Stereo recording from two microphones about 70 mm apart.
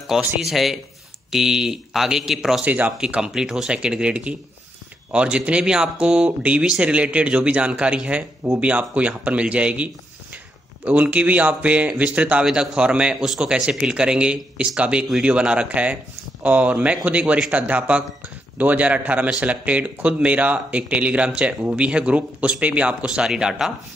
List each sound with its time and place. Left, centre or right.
0.4 s speech: centre
2.6 s speech: right
3.0 s speech: centre
10.9 s speech: right